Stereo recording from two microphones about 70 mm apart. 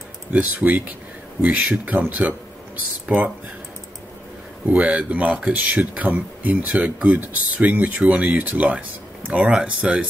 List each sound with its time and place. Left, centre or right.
0.3 s speech: right
4.6 s speech: right